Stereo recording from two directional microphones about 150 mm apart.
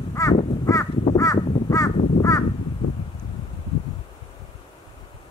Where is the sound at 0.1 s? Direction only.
20° left (ahead or behind).